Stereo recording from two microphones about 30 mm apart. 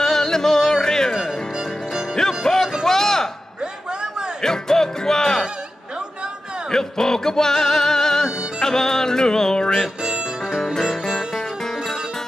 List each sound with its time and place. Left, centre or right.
0.0 s music: centre
2.1 s music: centre
2.8 s a sound: centre
4.4 s music: centre
6.7 s music: centre